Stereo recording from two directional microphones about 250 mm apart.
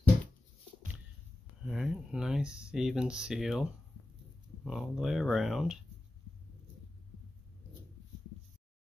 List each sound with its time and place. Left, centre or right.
1.6 s speech: centre